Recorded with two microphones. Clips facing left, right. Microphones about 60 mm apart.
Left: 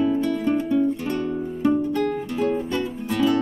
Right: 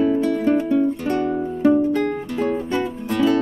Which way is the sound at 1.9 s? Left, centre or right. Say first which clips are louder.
Right 2 dB; centre.